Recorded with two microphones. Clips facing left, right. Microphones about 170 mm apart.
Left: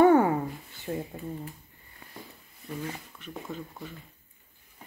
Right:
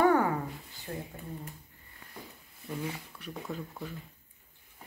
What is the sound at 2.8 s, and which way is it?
Speech, 5° right (ahead or behind).